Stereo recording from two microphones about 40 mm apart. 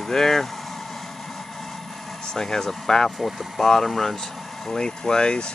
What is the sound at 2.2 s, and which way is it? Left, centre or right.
Speech, centre.